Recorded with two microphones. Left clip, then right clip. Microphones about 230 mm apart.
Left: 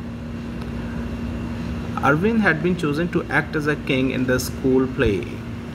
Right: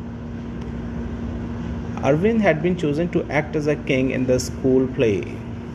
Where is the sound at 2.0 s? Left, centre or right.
Left.